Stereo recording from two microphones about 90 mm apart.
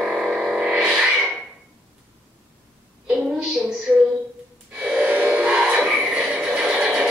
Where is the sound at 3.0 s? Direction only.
10° right (ahead or behind).